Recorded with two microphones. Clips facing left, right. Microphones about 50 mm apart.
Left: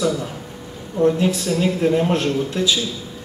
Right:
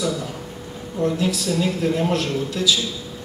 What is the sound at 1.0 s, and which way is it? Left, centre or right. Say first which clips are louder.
A man's voice: left 4 dB; left.